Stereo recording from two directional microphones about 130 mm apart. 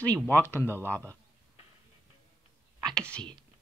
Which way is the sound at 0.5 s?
15° left (ahead or behind).